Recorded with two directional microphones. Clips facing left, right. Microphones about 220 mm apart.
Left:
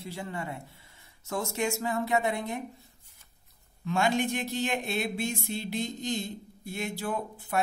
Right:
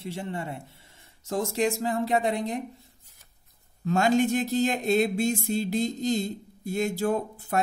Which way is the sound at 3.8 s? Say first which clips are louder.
Right 5 dB; 40° right (ahead or behind).